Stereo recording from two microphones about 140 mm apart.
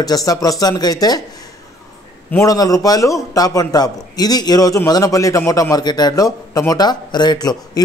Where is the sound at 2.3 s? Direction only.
25° left (ahead or behind).